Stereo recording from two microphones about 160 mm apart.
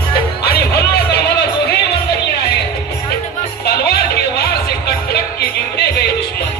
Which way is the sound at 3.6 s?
80° left.